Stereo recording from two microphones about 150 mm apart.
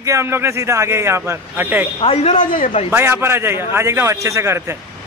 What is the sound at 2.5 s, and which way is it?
Speech, 60° left (ahead or behind).